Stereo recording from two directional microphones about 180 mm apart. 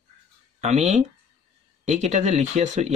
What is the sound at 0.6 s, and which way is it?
Speech, 40° right (ahead or behind).